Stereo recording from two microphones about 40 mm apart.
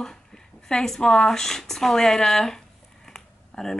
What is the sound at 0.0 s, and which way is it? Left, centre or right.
Speech, centre.